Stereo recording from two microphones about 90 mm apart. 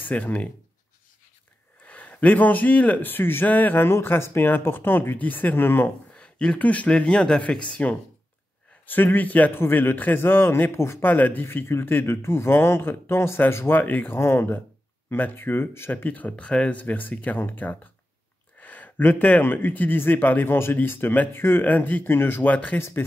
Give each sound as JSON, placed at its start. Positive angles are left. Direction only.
{"t": 0.0, "sound": "speech", "side_deg": 20}
{"t": 1.9, "sound": "a man's voice", "side_deg": 15}
{"t": 6.1, "sound": "a man's voice", "side_deg": 10}